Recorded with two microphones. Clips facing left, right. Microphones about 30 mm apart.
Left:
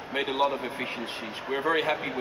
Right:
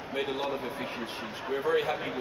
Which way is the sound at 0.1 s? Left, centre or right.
Left.